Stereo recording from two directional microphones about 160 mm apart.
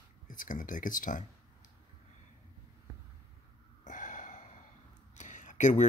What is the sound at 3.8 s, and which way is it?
Gasp, 50° left (ahead or behind).